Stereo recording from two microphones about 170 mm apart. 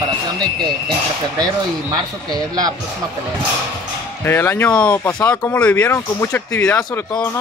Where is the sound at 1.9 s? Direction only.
25° right (ahead or behind).